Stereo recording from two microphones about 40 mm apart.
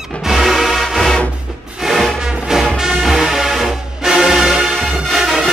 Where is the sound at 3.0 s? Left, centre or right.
Centre.